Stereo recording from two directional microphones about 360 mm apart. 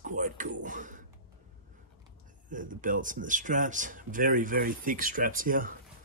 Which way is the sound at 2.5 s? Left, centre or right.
Right.